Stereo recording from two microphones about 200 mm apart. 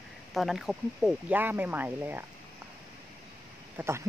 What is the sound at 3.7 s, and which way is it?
Speech, 15° right (ahead or behind).